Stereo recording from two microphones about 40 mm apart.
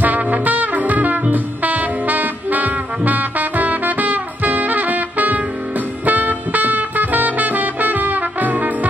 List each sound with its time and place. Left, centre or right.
0.0 s music: right